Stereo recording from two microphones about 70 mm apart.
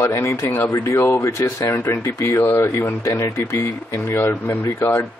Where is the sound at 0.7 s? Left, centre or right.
Left.